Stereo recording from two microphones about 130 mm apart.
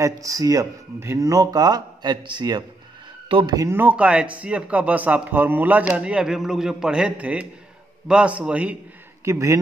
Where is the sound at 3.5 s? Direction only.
20° right (ahead or behind).